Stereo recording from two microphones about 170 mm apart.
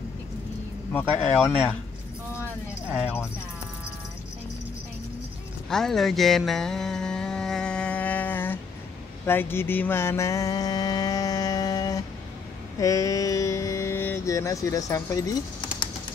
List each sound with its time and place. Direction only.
0.9 s speech: 5° left (ahead or behind)
5.7 s a sound: centre (ahead or behind)
9.2 s mantra: 15° left (ahead or behind)